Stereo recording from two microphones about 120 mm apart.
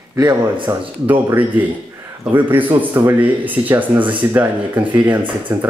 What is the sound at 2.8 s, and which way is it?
Speech, 15° right (ahead or behind).